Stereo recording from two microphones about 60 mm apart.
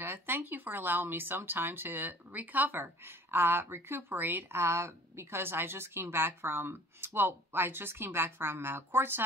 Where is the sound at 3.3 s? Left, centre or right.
Right.